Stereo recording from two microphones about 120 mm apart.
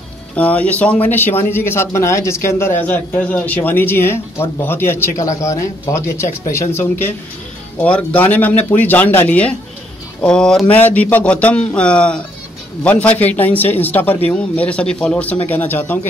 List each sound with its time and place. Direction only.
0.4 s speech: 10° left (ahead or behind)
7.8 s speech: 10° left (ahead or behind)